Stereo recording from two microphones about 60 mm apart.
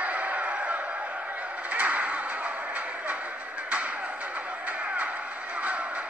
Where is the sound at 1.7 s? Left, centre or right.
Right.